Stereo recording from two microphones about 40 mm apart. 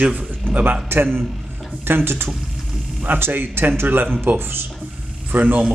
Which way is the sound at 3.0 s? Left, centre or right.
Right.